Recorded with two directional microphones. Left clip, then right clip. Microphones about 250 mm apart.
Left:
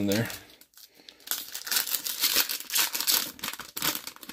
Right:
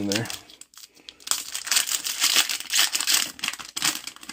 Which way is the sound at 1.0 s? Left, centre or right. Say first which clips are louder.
Right 7 dB; centre.